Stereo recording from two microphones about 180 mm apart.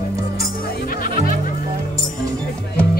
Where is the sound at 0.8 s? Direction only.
50° left (ahead or behind).